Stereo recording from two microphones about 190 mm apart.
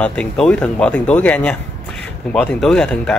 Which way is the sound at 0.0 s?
5° left (ahead or behind).